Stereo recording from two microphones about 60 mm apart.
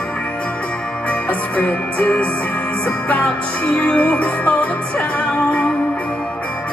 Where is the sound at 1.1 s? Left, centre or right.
Left.